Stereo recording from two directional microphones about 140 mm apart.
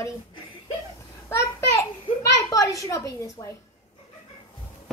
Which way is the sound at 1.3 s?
20° left (ahead or behind).